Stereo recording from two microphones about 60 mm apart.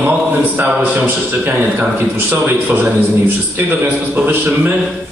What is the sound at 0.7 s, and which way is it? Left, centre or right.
A man's voice, right.